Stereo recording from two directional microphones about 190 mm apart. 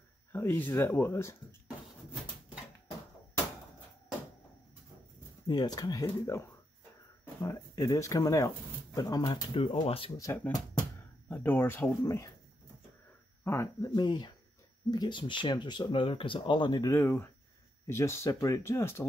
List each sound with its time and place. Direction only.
0.3 s speech: 10° left (ahead or behind)
5.5 s speech: 20° left (ahead or behind)
7.4 s speech: 15° left (ahead or behind)
10.2 s speech: 15° left (ahead or behind)
13.4 s speech: 15° left (ahead or behind)